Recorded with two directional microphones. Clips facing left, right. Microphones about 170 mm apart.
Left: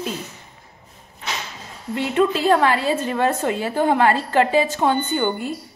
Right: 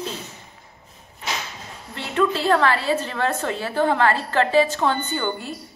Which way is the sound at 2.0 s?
15° left (ahead or behind).